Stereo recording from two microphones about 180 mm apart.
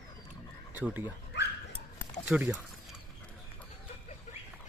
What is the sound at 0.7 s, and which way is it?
Speech, 10° right (ahead or behind).